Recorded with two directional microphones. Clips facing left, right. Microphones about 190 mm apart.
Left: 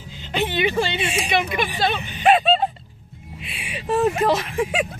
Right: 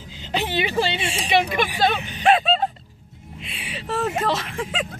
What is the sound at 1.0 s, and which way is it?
Speech, 15° left (ahead or behind).